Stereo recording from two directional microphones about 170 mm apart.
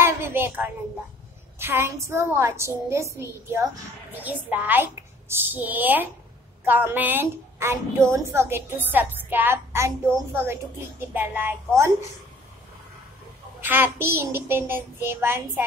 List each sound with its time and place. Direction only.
0.0 s a woman's voice: 15° right (ahead or behind)
13.6 s a woman's voice: 10° right (ahead or behind)